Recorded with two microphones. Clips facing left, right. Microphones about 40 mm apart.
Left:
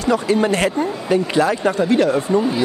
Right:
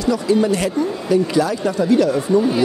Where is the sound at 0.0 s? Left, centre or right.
Left.